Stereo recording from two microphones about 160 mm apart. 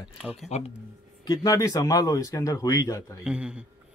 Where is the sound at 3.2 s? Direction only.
5° right (ahead or behind).